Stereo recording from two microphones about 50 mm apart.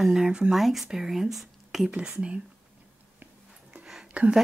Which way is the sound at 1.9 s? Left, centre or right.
Centre.